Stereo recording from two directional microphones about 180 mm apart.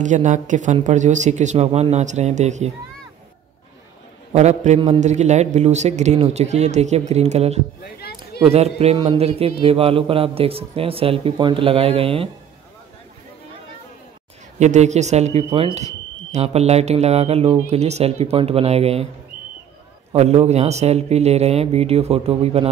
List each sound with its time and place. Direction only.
0.0 s speech: 40° right (ahead or behind)
4.3 s speech: 40° right (ahead or behind)
14.6 s speech: 40° right (ahead or behind)
20.1 s speech: 35° right (ahead or behind)